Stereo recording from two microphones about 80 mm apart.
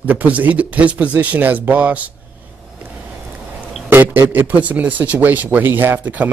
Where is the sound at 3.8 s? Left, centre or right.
Right.